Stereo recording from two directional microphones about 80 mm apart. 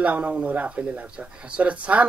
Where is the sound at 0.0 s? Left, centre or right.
Centre.